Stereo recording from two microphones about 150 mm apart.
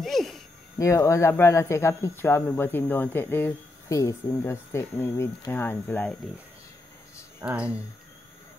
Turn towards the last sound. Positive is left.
turn(degrees=-10)  # may be behind; listen again after turning